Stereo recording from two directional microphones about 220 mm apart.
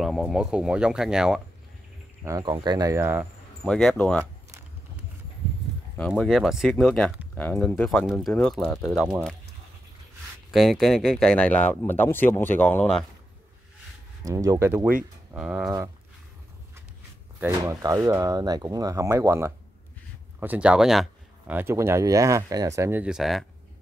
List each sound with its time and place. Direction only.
0.0 s speech: centre (ahead or behind)
2.2 s speech: 15° right (ahead or behind)
3.6 s speech: 5° left (ahead or behind)
5.9 s speech: 5° left (ahead or behind)
10.5 s speech: centre (ahead or behind)
14.2 s speech: 15° right (ahead or behind)
17.4 s speech: 10° right (ahead or behind)